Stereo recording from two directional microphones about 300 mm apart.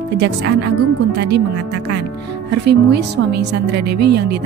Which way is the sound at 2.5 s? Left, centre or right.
Right.